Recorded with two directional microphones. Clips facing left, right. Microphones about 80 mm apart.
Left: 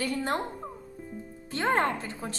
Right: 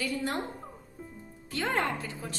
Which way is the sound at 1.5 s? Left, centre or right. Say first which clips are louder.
Left 4 dB; left.